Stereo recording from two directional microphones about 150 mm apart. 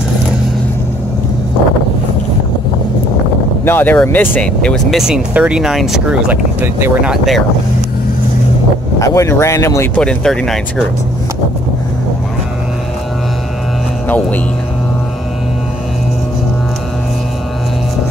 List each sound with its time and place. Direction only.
3.6 s speech: 15° left (ahead or behind); by 7.1 s 15° right (ahead or behind)
7.1 s speech: centre (ahead or behind)
9.0 s speech: 20° left (ahead or behind)
9.9 s speech: 5° left (ahead or behind)
14.0 s speech: 10° left (ahead or behind)